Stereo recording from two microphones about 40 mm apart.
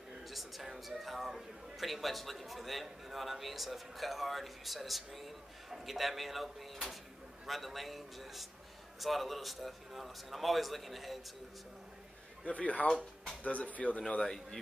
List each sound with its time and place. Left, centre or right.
0.2 s a man's voice: centre
12.4 s speech: left
12.8 s speech: left
13.4 s speech: left
14.2 s a man's voice: centre